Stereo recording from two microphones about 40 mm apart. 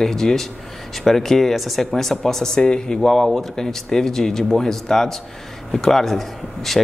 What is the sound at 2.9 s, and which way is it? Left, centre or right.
Speech, centre.